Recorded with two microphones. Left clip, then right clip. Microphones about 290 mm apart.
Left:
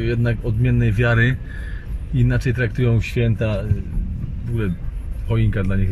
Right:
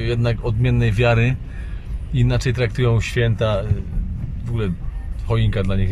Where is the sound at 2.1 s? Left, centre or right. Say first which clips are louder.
Even; centre.